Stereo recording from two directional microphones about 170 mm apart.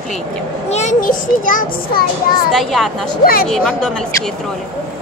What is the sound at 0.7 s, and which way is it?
A child's voice, 45° left (ahead or behind).